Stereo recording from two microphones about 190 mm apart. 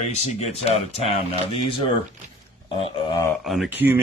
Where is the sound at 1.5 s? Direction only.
30° left (ahead or behind).